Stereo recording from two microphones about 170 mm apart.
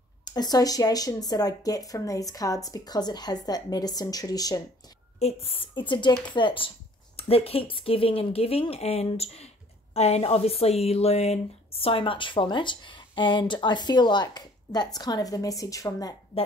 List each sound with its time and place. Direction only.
0.2 s speech: 25° left (ahead or behind)
5.2 s speech: 35° left (ahead or behind); by 16.2 s 20° left (ahead or behind)